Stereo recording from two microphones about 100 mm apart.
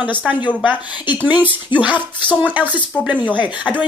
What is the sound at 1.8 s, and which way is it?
Speech, 20° right (ahead or behind).